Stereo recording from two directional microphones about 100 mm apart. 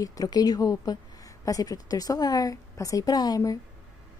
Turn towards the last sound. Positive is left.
turn(degrees=40)  # may be behind; listen again after turning